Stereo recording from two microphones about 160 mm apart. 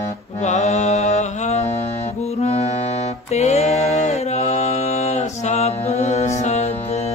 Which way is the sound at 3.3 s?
45° left (ahead or behind).